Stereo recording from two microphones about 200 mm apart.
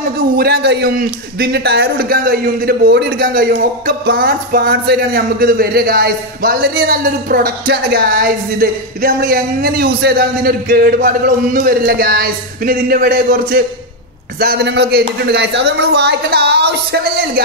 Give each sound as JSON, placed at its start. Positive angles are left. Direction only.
{"t": 0.4, "sound": "a man's voice", "side_deg": -50}